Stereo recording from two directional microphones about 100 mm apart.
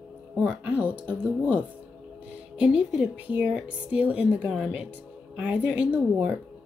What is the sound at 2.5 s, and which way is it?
A woman's voice, 10° right (ahead or behind).